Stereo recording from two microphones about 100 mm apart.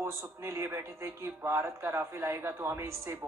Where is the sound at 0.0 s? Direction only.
25° right (ahead or behind).